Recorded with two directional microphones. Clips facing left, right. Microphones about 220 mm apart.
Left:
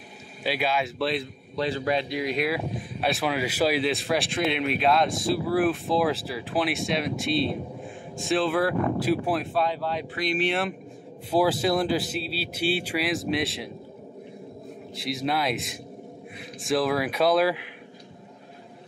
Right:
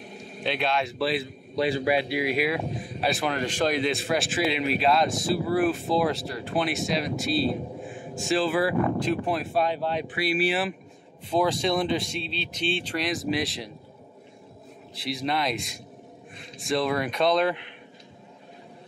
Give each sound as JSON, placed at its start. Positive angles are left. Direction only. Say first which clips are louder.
{"t": 0.4, "sound": "a man's voice", "louder": "even", "side_deg": 5}
{"t": 9.5, "sound": "speech", "louder": "right 1 dB", "side_deg": -15}
{"t": 10.1, "sound": "a man's voice", "louder": "even", "side_deg": -5}
{"t": 15.0, "sound": "a man's voice", "louder": "left 1 dB", "side_deg": 0}